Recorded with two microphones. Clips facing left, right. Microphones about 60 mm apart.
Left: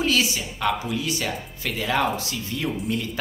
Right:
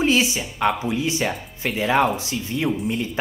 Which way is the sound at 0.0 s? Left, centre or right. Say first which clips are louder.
Right 3 dB; right.